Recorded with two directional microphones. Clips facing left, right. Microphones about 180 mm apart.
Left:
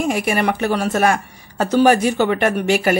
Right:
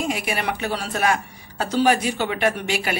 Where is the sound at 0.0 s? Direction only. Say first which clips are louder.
Left 6 dB; 50° left (ahead or behind).